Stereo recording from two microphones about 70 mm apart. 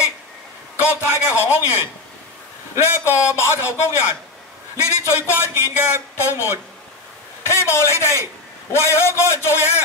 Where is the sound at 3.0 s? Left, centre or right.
Left.